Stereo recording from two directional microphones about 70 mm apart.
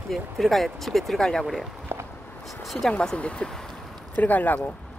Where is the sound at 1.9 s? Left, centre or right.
Right.